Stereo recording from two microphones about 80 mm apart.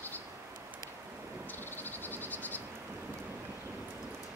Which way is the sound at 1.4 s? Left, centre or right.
Left.